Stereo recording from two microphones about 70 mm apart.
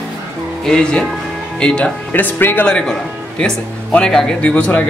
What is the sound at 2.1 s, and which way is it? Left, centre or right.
Speech, left.